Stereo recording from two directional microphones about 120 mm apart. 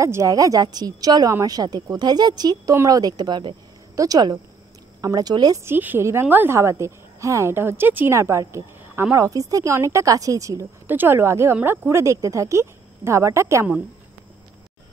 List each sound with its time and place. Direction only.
0.0 s a woman's voice: 25° right (ahead or behind)
5.6 s a woman's voice: 15° right (ahead or behind)
10.9 s a woman's voice: 20° right (ahead or behind)